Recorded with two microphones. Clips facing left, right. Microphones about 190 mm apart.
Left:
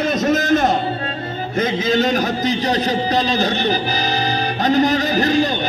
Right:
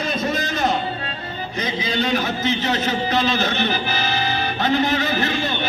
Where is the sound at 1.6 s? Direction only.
45° left (ahead or behind).